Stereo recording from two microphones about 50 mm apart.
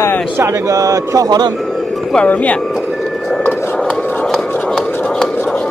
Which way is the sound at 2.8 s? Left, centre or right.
Centre.